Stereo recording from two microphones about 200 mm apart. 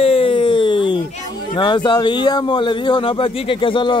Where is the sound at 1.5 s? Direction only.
25° left (ahead or behind).